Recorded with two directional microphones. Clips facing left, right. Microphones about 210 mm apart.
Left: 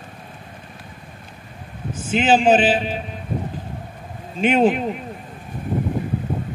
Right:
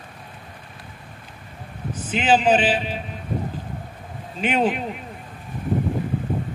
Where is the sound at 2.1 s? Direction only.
45° left (ahead or behind).